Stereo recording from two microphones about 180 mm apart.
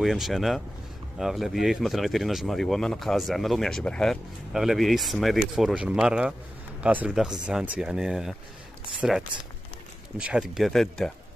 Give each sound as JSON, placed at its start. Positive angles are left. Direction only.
{"t": 0.0, "sound": "speech", "side_deg": 0}
{"t": 9.3, "sound": "speech", "side_deg": -25}
{"t": 10.1, "sound": "speech", "side_deg": -5}